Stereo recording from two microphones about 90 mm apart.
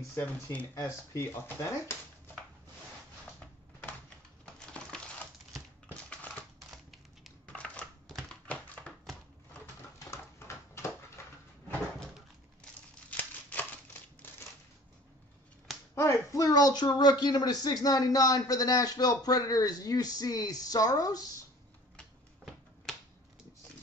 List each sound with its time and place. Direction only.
0.2 s speech: 15° left (ahead or behind)
0.7 s speech: 35° left (ahead or behind)
4.6 s crushing: 10° left (ahead or behind)
5.9 s typewriter: 15° left (ahead or behind)
7.5 s typing: 15° left (ahead or behind)
8.3 s a sound: 15° left (ahead or behind)
9.9 s dog: 30° left (ahead or behind)
12.6 s crumpling: 10° left (ahead or behind)
13.1 s a sound: 15° left (ahead or behind)
15.9 s speech: 30° left (ahead or behind)
21.9 s finger snapping: 5° left (ahead or behind)